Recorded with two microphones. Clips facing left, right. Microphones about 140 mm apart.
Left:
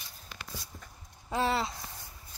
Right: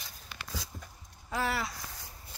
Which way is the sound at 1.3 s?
25° left (ahead or behind).